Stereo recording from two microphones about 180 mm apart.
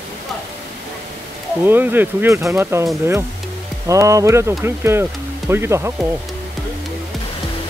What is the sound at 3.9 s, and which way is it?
Speech, 15° right (ahead or behind).